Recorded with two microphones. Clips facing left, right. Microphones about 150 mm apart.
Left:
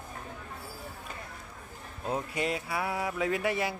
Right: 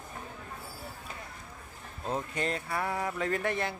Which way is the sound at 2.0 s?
10° left (ahead or behind).